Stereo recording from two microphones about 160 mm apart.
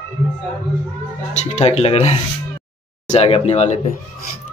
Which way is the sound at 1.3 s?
45° left (ahead or behind).